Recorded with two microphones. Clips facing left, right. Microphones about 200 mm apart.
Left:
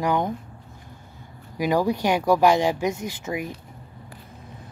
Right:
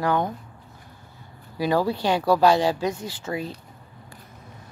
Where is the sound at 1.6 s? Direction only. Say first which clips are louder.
Left 1 dB; 15° left (ahead or behind).